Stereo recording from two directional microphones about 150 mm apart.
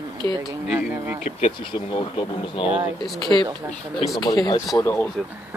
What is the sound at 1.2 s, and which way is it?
Speech, 35° left (ahead or behind).